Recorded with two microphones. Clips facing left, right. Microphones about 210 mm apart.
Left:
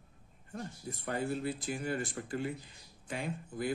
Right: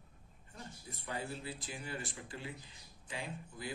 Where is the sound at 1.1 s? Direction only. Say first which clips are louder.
Left 8 dB; 50° left (ahead or behind).